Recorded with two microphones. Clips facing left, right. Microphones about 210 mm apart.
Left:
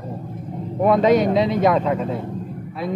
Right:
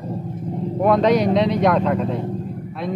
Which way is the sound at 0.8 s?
Centre (ahead or behind).